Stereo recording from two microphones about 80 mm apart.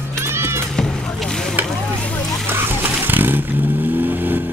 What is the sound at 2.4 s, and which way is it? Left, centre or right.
Vehicle, right.